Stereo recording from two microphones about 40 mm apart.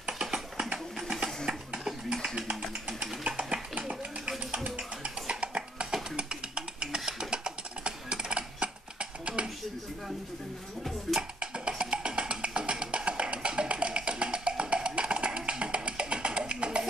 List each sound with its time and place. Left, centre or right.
3.0 s a sound: right
5.0 s music: right
6.1 s typing: right
9.2 s a sound: right
11.1 s music: centre
11.5 s music: right